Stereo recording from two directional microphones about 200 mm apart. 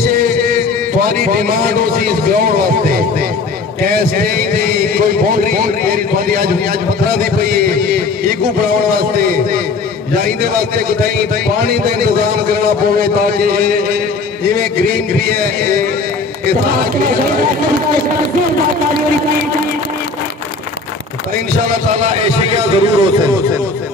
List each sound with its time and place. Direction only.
0.1 s heart murmur: 45° right (ahead or behind)
1.0 s a man's voice: 45° right (ahead or behind)
21.6 s a man's voice: 35° right (ahead or behind)